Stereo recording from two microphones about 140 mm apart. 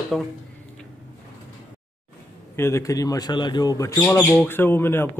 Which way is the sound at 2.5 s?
20° left (ahead or behind).